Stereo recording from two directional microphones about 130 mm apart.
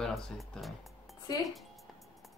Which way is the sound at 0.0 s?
Centre (ahead or behind).